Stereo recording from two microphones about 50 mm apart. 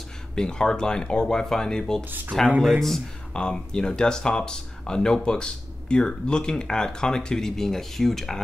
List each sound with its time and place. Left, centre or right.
0.4 s speech: centre
3.3 s speech: centre